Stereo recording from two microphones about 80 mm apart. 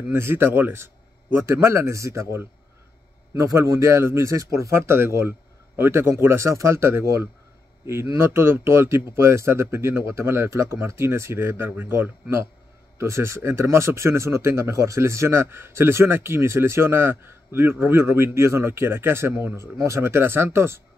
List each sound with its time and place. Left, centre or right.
0.1 s speech: right